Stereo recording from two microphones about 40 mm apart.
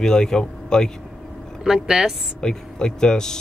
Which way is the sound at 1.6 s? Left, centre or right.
Centre.